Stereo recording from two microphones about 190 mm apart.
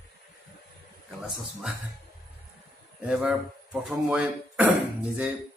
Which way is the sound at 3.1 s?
Centre (ahead or behind).